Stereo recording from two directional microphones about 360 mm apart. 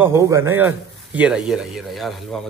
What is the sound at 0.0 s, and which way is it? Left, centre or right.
A man's voice, centre.